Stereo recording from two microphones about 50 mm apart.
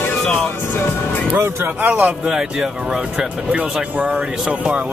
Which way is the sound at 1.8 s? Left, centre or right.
Right.